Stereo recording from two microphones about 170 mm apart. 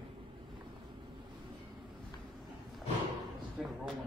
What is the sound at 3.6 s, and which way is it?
Speech, centre (ahead or behind).